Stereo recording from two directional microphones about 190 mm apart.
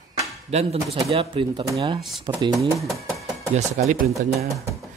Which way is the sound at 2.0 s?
Centre (ahead or behind).